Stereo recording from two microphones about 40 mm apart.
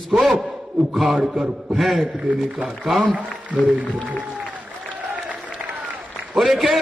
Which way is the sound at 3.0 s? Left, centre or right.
Right.